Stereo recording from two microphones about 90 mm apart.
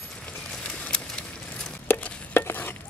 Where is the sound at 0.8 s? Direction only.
10° left (ahead or behind).